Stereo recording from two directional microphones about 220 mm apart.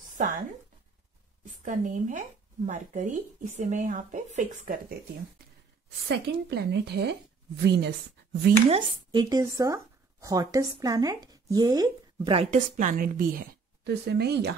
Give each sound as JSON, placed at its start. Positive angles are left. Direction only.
{"t": 1.4, "sound": "speech", "side_deg": -35}
{"t": 6.0, "sound": "speech", "side_deg": -50}
{"t": 8.6, "sound": "speech", "side_deg": -20}